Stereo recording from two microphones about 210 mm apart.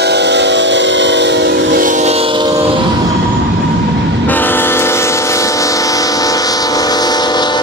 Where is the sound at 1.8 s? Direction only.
35° right (ahead or behind).